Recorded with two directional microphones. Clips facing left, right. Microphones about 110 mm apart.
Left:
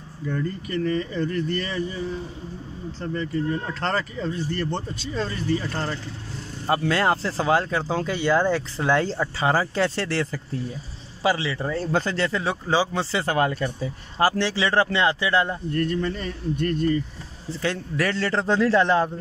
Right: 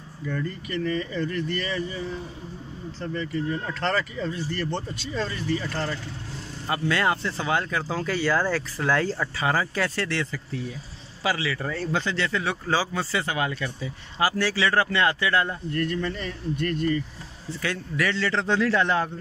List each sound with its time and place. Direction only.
0.7 s speech: 25° left (ahead or behind)
1.3 s speech: 30° left (ahead or behind)
3.0 s speech: 25° left (ahead or behind)
11.9 s speech: 45° left (ahead or behind)
12.6 s speech: 20° left (ahead or behind)
13.2 s speech: 45° left (ahead or behind)
14.4 s speech: 25° left (ahead or behind)